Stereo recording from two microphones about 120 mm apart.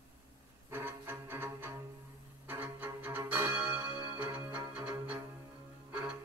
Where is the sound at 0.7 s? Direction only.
15° right (ahead or behind).